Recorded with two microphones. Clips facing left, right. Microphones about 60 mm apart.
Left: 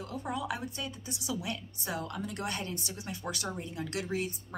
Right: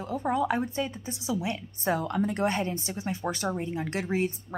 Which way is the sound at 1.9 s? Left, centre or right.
Right.